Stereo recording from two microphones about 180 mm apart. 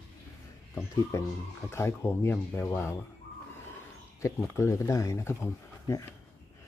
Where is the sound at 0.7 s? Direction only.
15° left (ahead or behind).